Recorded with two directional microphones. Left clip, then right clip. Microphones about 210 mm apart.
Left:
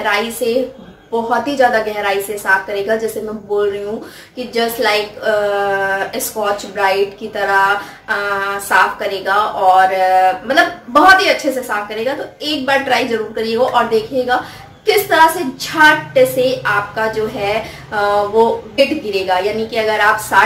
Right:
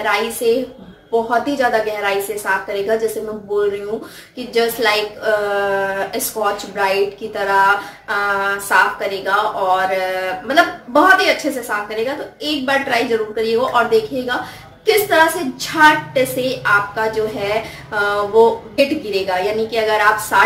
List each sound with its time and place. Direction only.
0.0 s a woman's voice: centre (ahead or behind)